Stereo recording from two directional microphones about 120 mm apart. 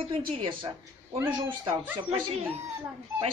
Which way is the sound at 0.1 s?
45° right (ahead or behind).